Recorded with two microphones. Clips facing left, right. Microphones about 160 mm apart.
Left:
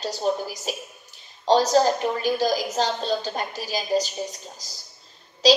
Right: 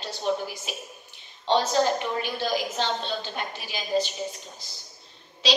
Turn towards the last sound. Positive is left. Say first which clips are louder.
# left 8 dB
turn(degrees=40)  # may be behind; listen again after turning